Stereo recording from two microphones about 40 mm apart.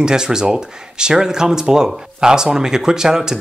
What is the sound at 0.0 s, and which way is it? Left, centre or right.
Speech, centre.